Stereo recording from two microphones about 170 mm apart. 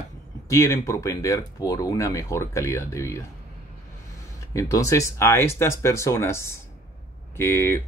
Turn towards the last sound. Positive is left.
turn(degrees=15)  # may be behind; listen again after turning